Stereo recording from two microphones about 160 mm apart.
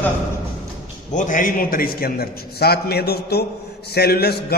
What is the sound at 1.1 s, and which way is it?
A man's voice, 55° left (ahead or behind).